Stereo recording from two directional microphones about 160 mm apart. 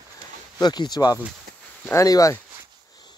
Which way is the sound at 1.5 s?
70° right (ahead or behind).